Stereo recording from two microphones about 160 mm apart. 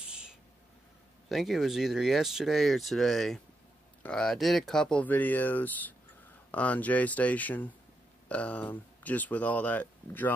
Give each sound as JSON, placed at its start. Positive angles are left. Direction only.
{"t": 0.0, "sound": "owl", "side_deg": -5}
{"t": 1.3, "sound": "speech", "side_deg": 0}